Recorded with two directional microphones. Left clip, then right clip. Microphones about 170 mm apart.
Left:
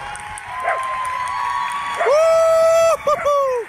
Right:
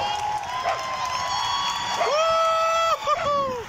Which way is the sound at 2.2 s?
25° left (ahead or behind).